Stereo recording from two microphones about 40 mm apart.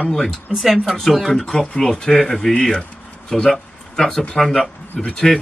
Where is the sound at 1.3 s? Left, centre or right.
Centre.